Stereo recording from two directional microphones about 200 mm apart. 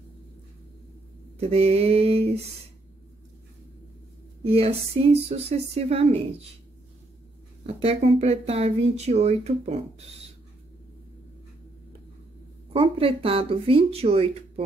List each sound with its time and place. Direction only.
1.4 s speech: 30° right (ahead or behind)
4.4 s speech: 30° right (ahead or behind)
7.6 s speech: 30° right (ahead or behind)
12.7 s speech: 30° right (ahead or behind)